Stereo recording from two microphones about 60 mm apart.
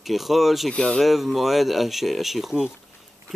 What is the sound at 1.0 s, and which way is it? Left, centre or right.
Speech, centre.